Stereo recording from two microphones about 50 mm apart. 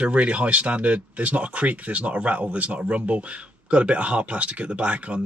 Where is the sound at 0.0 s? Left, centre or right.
Right.